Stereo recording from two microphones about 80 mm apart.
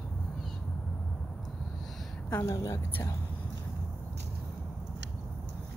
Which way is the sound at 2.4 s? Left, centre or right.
Left.